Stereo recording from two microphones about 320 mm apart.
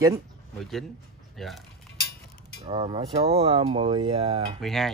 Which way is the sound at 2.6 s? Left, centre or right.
Centre.